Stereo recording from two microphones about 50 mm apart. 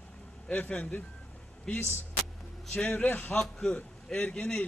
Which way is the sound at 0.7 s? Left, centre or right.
Left.